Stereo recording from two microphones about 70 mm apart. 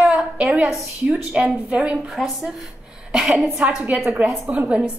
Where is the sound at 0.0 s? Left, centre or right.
Centre.